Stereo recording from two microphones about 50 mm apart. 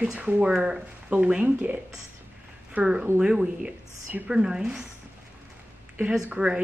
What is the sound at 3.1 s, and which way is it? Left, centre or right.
A woman's voice, right.